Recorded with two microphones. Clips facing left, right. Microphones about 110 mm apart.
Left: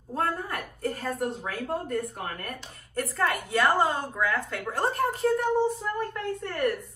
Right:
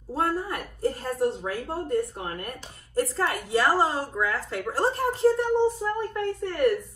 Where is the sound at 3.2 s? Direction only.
30° right (ahead or behind).